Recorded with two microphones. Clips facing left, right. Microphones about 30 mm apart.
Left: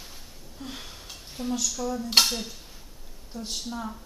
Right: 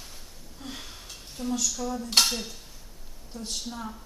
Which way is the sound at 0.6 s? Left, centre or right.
Centre.